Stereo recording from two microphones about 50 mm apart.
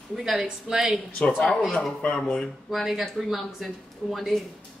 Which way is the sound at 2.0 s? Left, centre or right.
Left.